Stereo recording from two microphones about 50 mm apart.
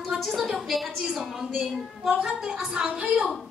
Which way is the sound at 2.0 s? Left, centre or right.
Right.